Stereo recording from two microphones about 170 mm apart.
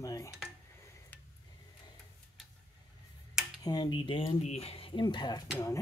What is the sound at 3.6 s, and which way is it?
Speech, 25° left (ahead or behind).